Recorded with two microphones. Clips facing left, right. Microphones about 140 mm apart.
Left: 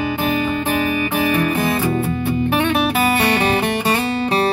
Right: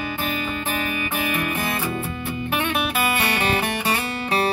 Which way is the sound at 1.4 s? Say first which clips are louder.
Left 7 dB; 40° left (ahead or behind).